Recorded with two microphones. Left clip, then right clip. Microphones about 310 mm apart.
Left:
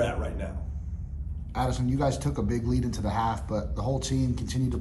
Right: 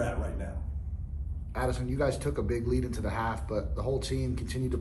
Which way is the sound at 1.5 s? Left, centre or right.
Left.